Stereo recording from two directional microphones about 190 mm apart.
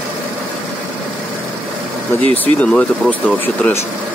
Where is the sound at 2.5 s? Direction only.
5° left (ahead or behind).